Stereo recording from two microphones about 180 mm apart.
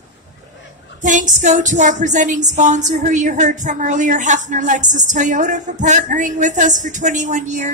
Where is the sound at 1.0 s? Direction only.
45° right (ahead or behind).